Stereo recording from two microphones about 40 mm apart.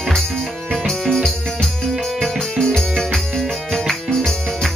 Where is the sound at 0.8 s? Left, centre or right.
Centre.